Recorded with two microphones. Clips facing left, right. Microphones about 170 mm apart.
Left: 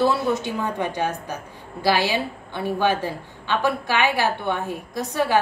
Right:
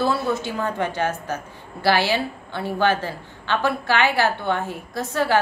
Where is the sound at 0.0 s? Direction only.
15° left (ahead or behind).